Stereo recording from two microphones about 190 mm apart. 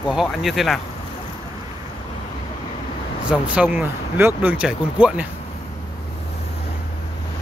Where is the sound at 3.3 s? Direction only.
5° right (ahead or behind).